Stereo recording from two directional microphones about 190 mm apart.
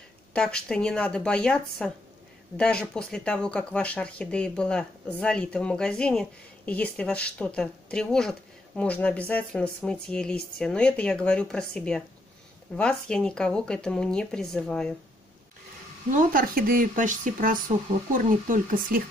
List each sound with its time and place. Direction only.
0.3 s speech: 5° left (ahead or behind)
16.1 s speech: 45° right (ahead or behind)